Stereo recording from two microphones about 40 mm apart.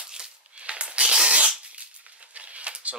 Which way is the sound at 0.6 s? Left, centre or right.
Right.